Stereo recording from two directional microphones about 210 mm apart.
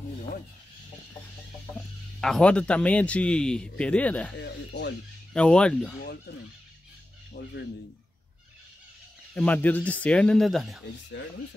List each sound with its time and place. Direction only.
1.8 s speech: centre (ahead or behind)
4.4 s speech: 55° left (ahead or behind)
5.3 s speech: 5° left (ahead or behind)
7.3 s speech: 35° left (ahead or behind)
9.3 s speech: 5° left (ahead or behind)